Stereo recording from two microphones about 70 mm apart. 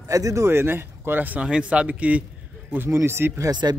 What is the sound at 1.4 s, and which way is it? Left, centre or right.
Speech, centre.